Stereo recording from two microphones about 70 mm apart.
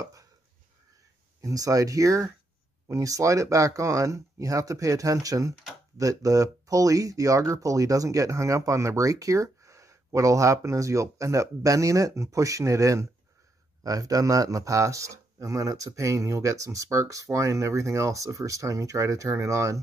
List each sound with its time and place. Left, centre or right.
0.0 s chopping: right
1.4 s speech: right